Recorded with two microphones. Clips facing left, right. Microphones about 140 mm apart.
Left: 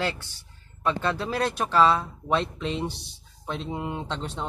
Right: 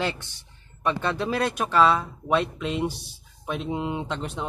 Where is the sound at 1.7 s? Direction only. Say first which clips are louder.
Even; centre (ahead or behind).